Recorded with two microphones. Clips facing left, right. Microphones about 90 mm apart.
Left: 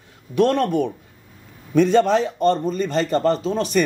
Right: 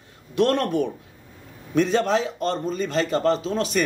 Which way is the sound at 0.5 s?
55° left (ahead or behind).